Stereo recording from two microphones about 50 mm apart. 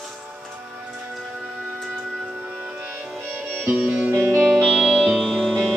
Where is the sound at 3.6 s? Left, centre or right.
Centre.